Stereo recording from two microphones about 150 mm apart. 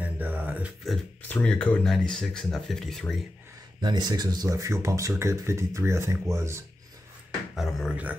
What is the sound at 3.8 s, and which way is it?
Speech, 25° right (ahead or behind).